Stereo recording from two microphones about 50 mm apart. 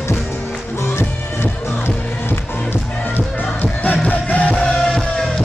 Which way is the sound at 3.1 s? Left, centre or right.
Left.